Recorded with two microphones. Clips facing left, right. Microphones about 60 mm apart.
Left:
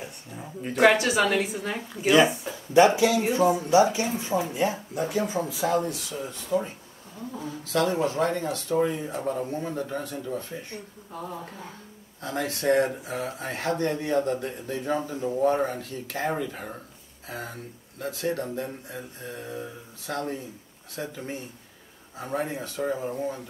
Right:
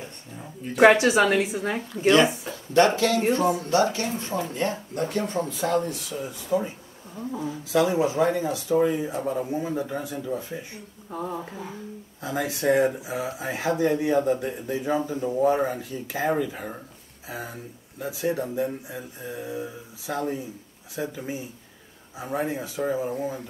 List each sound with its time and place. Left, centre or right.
0.0 s a sound: centre
0.8 s a woman's voice: right
2.7 s speech: centre